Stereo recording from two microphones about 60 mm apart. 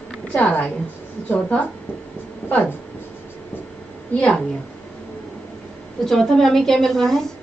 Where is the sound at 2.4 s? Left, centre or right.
Centre.